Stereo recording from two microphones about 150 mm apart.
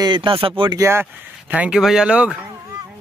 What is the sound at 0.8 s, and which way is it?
Speech, 15° right (ahead or behind).